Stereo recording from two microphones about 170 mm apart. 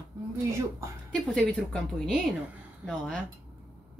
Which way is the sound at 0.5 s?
15° right (ahead or behind).